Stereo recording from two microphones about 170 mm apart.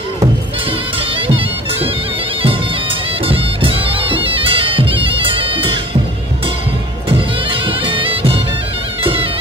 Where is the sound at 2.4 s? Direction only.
30° right (ahead or behind).